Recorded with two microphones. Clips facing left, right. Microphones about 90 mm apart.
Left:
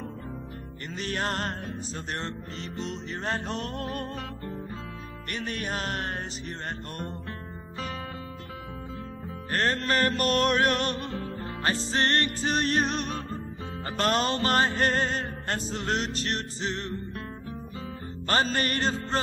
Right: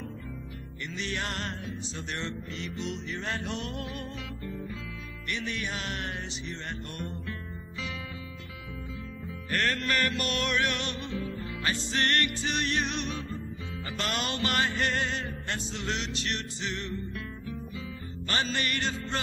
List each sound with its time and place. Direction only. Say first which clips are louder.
0.9 s music: left 4 dB; 40° left (ahead or behind)
9.5 s music: left 3 dB; 35° left (ahead or behind)
18.3 s music: left 5 dB; 40° left (ahead or behind)